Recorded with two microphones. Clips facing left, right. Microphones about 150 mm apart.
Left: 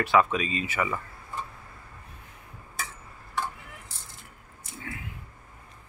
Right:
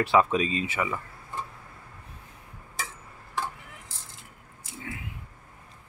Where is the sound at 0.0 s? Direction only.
30° right (ahead or behind).